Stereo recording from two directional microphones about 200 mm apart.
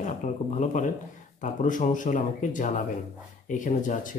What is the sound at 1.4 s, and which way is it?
Speech, 40° left (ahead or behind).